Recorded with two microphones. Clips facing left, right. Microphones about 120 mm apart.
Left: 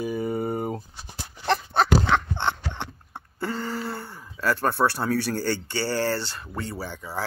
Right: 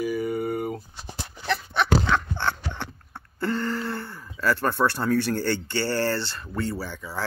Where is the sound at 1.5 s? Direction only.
35° left (ahead or behind); by 7.0 s 15° left (ahead or behind).